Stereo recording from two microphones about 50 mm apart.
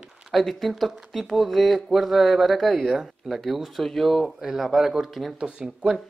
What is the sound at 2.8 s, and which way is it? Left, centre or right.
Speech, centre.